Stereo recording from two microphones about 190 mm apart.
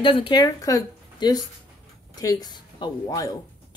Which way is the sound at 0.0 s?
25° left (ahead or behind).